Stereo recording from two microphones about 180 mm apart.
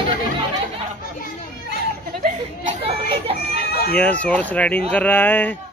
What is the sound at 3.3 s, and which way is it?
Chicken, 60° left (ahead or behind).